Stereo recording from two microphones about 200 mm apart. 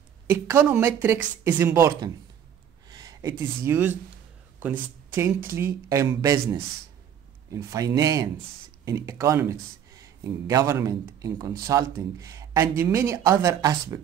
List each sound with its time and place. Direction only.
0.3 s speech: 10° right (ahead or behind)
2.9 s a sound: 20° right (ahead or behind)
3.6 s speech: 10° right (ahead or behind)
5.1 s speech: 10° right (ahead or behind)